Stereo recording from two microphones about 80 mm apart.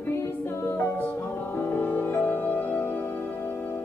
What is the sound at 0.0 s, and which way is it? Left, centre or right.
A capella, left.